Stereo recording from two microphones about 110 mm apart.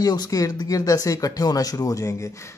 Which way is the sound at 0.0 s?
35° left (ahead or behind).